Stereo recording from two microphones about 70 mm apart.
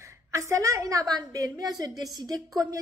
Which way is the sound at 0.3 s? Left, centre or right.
Right.